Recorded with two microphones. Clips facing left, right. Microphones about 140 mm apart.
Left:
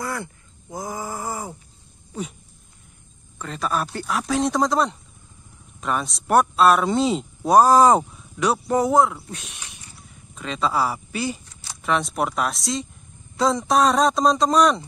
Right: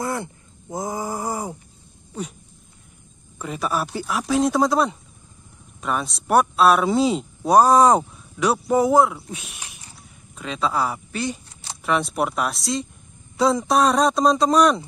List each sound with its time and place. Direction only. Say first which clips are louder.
0.0 s speech: right 3 dB; 25° right (ahead or behind)
3.3 s speech: right 1 dB; 10° right (ahead or behind)